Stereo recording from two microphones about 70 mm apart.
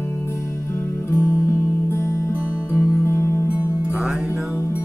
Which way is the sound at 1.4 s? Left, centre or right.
Left.